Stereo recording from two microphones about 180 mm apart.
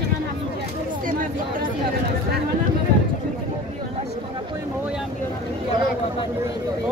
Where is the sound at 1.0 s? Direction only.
50° right (ahead or behind).